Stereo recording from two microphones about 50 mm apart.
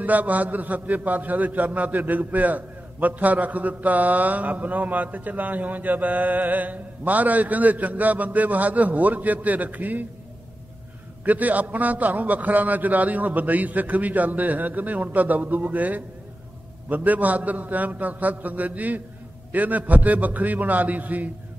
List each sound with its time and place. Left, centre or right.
0.0 s a man's voice: right
11.2 s a man's voice: right